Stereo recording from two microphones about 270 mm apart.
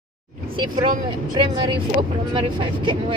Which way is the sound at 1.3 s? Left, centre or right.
Centre.